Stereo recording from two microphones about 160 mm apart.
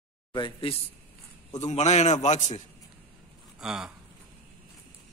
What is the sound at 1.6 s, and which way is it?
A man's voice, 45° left (ahead or behind).